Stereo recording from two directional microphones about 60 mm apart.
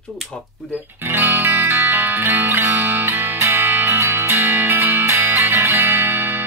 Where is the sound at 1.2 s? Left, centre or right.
Right.